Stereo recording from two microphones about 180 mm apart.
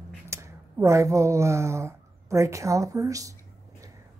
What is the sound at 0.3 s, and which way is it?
Speech, 15° right (ahead or behind).